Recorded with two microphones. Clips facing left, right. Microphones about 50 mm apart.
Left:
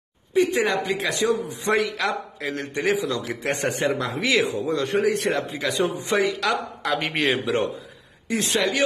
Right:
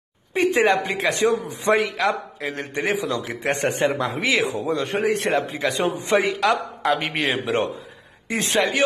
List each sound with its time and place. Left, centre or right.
0.5 s a man's voice: right
7.1 s a man's voice: centre
8.4 s a man's voice: right